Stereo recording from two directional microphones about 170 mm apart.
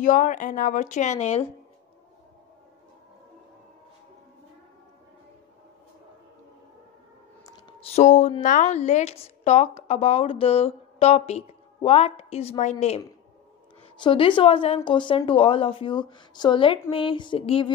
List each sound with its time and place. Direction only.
0.0 s speech: 45° left (ahead or behind)
7.4 s clicking: 25° left (ahead or behind)
7.9 s a woman's voice: 45° left (ahead or behind)
13.9 s a woman's voice: 30° left (ahead or behind)